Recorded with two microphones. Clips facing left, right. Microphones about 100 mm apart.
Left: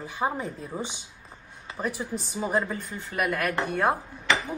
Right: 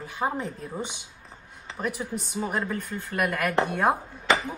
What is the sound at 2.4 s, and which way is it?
Speech, 15° left (ahead or behind).